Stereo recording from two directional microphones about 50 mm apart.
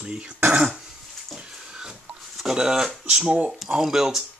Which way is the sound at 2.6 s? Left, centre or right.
Centre.